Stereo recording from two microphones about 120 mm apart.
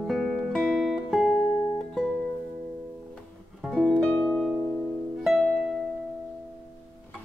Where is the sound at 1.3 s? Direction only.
20° left (ahead or behind).